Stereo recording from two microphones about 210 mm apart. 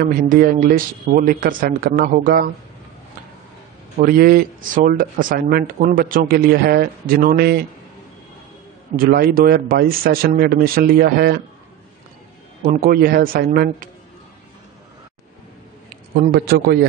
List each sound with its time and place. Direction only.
0.0 s speech: 45° right (ahead or behind)
4.0 s speech: 45° right (ahead or behind)
8.9 s speech: 45° right (ahead or behind)
12.8 s speech: 45° right (ahead or behind)
16.2 s speech: 45° right (ahead or behind)